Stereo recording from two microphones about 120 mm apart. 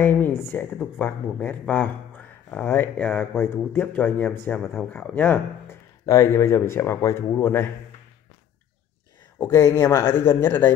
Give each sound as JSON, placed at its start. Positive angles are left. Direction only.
{"t": 0.0, "sound": "speech", "side_deg": 15}
{"t": 9.4, "sound": "speech", "side_deg": 20}